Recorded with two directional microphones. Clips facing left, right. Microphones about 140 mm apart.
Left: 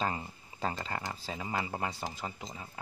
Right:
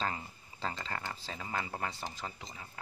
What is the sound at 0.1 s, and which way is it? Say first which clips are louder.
Speech: left 3 dB; 20° left (ahead or behind).